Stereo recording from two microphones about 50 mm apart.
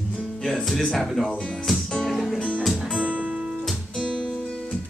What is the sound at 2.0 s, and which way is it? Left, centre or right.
Music, centre.